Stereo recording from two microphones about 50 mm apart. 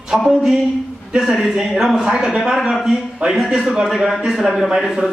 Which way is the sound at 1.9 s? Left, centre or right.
Centre.